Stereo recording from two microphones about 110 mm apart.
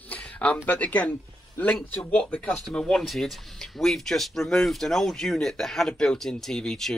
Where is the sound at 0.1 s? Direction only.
10° left (ahead or behind).